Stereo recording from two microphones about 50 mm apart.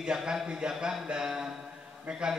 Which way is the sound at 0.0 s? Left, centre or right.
Centre.